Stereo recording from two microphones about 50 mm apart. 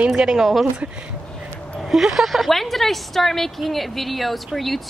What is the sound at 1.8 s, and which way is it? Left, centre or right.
A woman's voice, centre.